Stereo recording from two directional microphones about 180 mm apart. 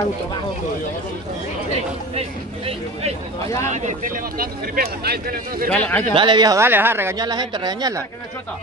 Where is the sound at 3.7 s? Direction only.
40° right (ahead or behind).